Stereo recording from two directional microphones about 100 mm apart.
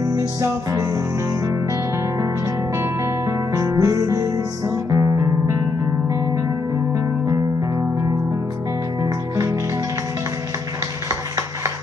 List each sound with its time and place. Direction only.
0.4 s music: 35° right (ahead or behind)
2.7 s music: 25° right (ahead or behind)
11.1 s a sound: 30° right (ahead or behind)